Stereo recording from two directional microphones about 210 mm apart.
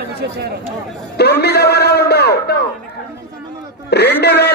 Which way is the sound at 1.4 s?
50° left (ahead or behind).